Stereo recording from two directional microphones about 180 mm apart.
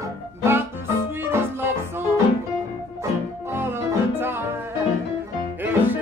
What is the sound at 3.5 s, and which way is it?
Music, 15° right (ahead or behind).